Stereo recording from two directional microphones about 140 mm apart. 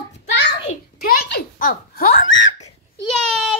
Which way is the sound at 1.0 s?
90° left.